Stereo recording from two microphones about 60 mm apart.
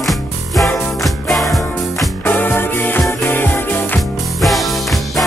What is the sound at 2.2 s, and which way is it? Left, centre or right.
Music, left.